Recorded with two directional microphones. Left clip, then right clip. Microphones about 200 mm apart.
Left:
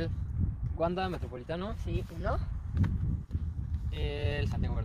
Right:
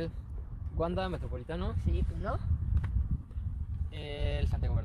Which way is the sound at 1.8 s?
20° left (ahead or behind).